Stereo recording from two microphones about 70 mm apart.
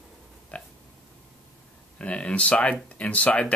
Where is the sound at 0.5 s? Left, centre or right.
Left.